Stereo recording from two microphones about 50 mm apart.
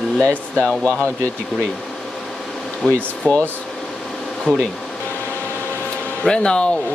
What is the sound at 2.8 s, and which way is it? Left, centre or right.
Speech, centre.